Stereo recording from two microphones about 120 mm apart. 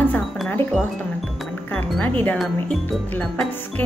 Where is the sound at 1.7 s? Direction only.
10° left (ahead or behind).